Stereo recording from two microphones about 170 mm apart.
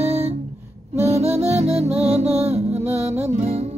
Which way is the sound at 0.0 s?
35° right (ahead or behind).